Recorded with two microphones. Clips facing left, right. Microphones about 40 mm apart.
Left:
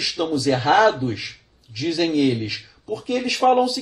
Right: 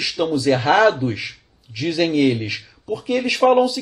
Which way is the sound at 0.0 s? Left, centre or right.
Centre.